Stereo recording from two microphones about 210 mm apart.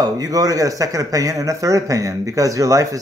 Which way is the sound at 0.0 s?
15° right (ahead or behind).